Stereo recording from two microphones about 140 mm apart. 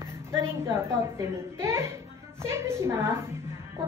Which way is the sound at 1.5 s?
20° right (ahead or behind).